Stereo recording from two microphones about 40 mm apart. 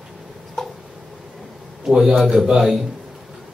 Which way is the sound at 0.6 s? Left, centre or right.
Centre.